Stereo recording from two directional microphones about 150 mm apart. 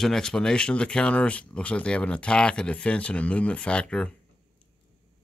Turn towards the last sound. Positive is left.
turn(degrees=5)  # may be behind; listen again after turning